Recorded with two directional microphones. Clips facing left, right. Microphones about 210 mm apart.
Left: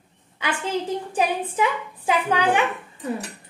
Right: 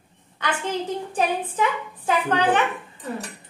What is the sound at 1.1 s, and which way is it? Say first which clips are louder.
A woman's voice: even; 10° left (ahead or behind).